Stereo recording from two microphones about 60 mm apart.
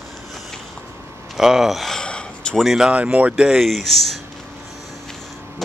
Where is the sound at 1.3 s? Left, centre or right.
Centre.